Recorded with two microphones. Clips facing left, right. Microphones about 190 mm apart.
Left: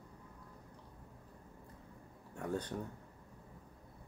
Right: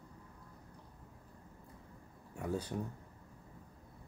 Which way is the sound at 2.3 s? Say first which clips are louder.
Right 1 dB; 5° right (ahead or behind).